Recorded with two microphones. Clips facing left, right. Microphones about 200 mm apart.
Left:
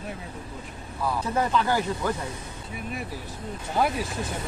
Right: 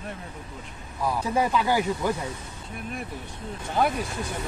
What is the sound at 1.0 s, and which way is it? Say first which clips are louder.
Speech: right 1 dB; 10° right (ahead or behind).